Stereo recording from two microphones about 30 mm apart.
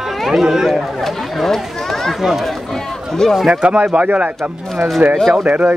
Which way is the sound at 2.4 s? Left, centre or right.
Centre.